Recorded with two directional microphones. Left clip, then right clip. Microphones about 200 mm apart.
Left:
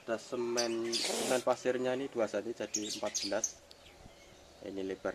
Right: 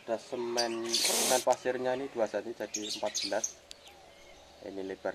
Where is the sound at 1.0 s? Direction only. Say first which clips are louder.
Right 9 dB; 5° left (ahead or behind).